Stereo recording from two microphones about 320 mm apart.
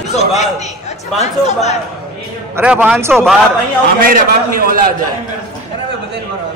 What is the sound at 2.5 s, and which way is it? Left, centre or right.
Speech, centre.